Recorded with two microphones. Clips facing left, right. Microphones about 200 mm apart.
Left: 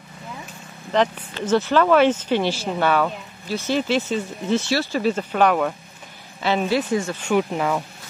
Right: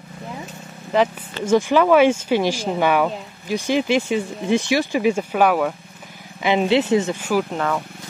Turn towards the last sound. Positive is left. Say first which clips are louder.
# even
turn(degrees=10)  # may be behind; listen again after turning